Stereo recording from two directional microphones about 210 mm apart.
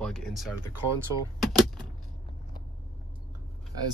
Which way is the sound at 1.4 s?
Centre (ahead or behind).